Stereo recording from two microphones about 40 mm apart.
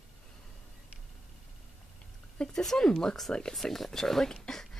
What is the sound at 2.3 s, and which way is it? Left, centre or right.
A woman's voice, centre.